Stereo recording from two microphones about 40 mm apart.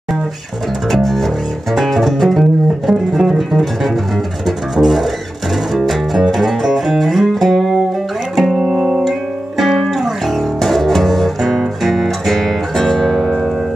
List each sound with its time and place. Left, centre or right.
0.8 s music: centre
8.5 s music: centre
9.8 s guitar: centre